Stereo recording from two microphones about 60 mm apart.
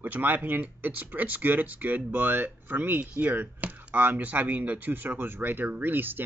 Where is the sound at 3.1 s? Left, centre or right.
Right.